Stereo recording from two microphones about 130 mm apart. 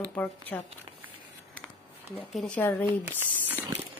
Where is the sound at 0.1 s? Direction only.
15° left (ahead or behind).